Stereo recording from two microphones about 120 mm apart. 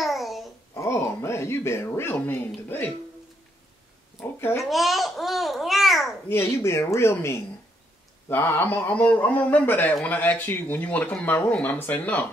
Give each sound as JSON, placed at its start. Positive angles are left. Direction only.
{"t": 0.0, "sound": "babbling", "side_deg": 0}
{"t": 0.7, "sound": "a sound", "side_deg": 20}
{"t": 4.6, "sound": "babbling", "side_deg": 0}
{"t": 6.2, "sound": "speech", "side_deg": 20}